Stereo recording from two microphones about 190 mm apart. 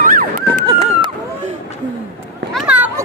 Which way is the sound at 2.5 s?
5° right (ahead or behind).